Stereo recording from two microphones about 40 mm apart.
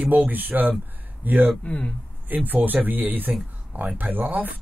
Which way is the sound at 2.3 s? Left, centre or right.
Right.